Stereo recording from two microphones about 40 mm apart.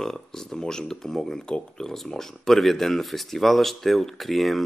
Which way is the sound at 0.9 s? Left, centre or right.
Centre.